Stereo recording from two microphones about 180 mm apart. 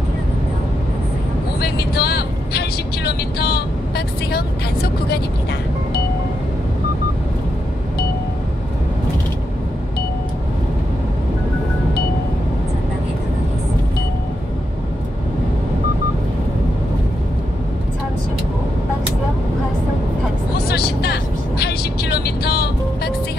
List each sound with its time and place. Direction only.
1.6 s vehicle: 60° left (ahead or behind)
20.6 s vehicle: 60° left (ahead or behind)